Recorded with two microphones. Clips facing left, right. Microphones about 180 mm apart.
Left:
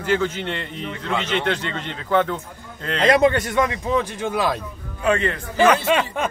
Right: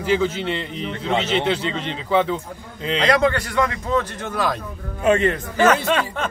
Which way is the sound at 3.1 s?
25° left (ahead or behind).